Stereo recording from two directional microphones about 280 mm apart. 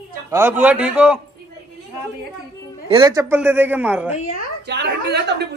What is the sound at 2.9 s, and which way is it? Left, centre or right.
Speech, centre.